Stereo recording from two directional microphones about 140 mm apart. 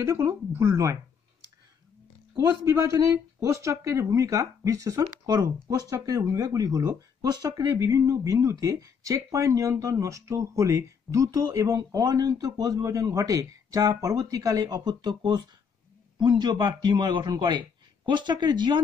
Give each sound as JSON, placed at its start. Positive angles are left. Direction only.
{"t": 0.0, "sound": "speech", "side_deg": -20}
{"t": 2.3, "sound": "a man's voice", "side_deg": -25}